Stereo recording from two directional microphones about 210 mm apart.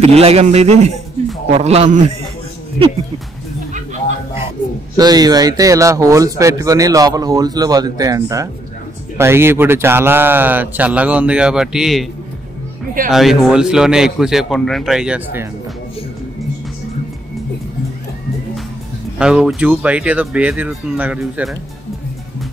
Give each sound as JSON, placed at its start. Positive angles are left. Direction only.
{"t": 0.0, "sound": "a man's voice", "side_deg": -30}
{"t": 4.9, "sound": "speech", "side_deg": -20}
{"t": 13.1, "sound": "a man's voice", "side_deg": 0}
{"t": 19.1, "sound": "speech", "side_deg": -5}